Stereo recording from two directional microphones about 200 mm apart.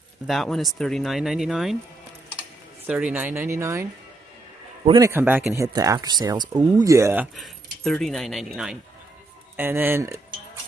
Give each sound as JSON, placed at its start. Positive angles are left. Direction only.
{"t": 0.3, "sound": "speech", "side_deg": 0}
{"t": 2.9, "sound": "speech", "side_deg": -10}
{"t": 4.8, "sound": "speech", "side_deg": -20}
{"t": 5.1, "sound": "speech", "side_deg": -10}
{"t": 7.3, "sound": "speech", "side_deg": 0}